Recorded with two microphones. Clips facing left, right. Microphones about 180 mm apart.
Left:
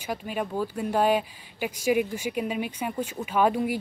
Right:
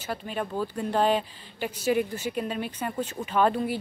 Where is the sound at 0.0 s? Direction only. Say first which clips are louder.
Left 1 dB; 10° left (ahead or behind).